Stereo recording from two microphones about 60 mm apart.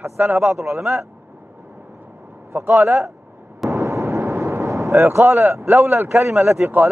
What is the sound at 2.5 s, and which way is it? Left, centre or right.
Speech, right.